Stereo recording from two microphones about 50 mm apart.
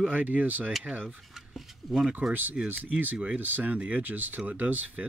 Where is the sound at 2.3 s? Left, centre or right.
Right.